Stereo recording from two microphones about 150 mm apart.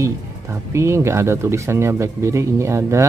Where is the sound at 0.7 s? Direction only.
20° right (ahead or behind).